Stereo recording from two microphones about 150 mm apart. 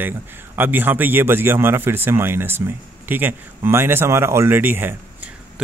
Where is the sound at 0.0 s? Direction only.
15° right (ahead or behind).